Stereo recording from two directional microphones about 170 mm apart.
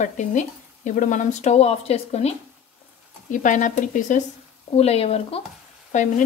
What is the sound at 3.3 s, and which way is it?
Speech, 50° left (ahead or behind).